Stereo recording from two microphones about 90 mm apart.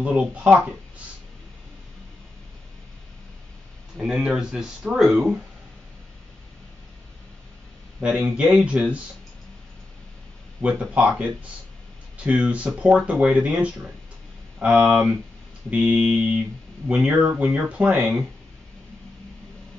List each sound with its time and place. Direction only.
0.0 s speech: 15° right (ahead or behind)
3.9 s speech: 5° right (ahead or behind)
8.0 s speech: 15° right (ahead or behind)
10.6 s speech: 15° right (ahead or behind)